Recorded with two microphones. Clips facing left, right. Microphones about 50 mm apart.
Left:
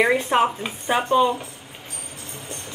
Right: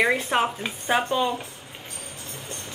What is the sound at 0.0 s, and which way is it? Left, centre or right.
A woman's voice, centre.